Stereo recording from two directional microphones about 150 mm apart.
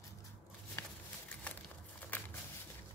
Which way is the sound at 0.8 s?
10° left (ahead or behind).